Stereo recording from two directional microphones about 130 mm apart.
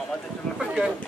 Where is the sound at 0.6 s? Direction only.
Centre (ahead or behind).